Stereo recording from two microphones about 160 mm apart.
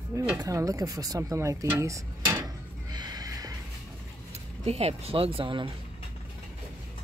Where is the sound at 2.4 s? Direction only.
25° right (ahead or behind).